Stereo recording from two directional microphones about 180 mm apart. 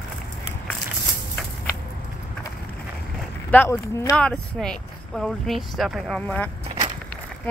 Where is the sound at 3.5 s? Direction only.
10° left (ahead or behind).